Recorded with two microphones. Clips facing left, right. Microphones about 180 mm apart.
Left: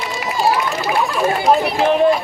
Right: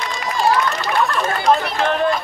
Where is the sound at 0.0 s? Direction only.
5° left (ahead or behind).